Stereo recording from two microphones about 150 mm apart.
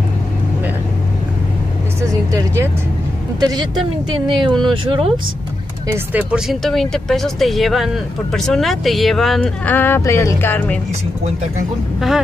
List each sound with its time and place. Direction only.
2.0 s vehicle: 20° right (ahead or behind)
3.3 s speech: 25° right (ahead or behind)
6.1 s speech: 5° right (ahead or behind); by 10.8 s 15° left (ahead or behind)